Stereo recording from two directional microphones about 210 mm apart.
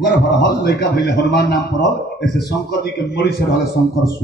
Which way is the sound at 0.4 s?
50° left (ahead or behind).